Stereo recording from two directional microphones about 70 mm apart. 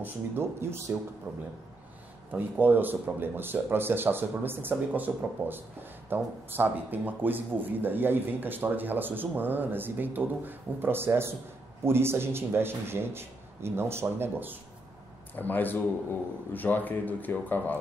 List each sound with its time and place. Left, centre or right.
0.0 s a man's voice: right
1.3 s a man's voice: right
15.3 s speech: left